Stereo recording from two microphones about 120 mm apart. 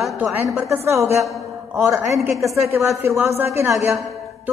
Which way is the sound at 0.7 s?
20° right (ahead or behind).